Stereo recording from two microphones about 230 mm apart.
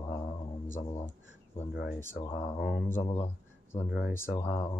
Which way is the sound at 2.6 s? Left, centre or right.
Left.